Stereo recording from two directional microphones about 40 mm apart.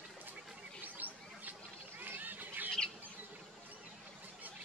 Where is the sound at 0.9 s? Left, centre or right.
Right.